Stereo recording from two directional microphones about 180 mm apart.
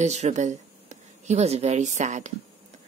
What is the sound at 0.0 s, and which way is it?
A woman's voice, 40° right (ahead or behind).